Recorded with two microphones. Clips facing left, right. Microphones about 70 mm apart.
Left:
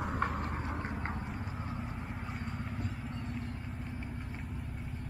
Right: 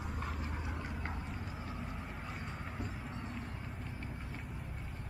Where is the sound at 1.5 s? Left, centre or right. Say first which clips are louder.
Left 3 dB; centre.